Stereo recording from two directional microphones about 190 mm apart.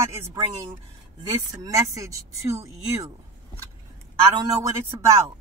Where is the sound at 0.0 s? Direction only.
15° right (ahead or behind).